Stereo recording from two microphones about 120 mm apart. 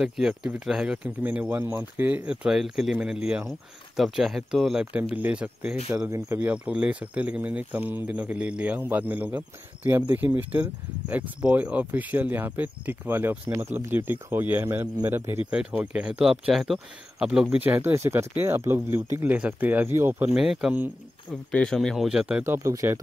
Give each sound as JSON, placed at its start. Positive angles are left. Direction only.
{"t": 0.0, "sound": "speech", "side_deg": -5}
{"t": 6.0, "sound": "speech", "side_deg": -25}
{"t": 6.5, "sound": "speech", "side_deg": -10}
{"t": 20.3, "sound": "speech", "side_deg": -5}
{"t": 21.5, "sound": "speech", "side_deg": 5}
{"t": 22.4, "sound": "speech", "side_deg": -25}